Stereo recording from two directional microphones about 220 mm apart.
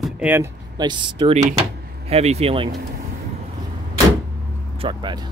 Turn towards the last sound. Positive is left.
turn(degrees=-20)  # may be behind; listen again after turning